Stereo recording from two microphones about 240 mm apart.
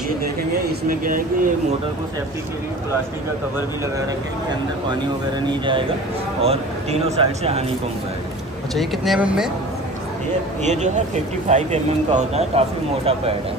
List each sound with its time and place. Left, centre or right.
0.8 s speech: right
5.5 s speech: right
8.7 s speech: centre
10.6 s speech: right